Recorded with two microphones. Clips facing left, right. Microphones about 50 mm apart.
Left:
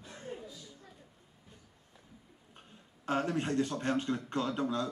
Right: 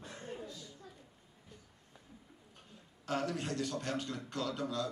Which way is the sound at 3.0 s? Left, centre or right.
Left.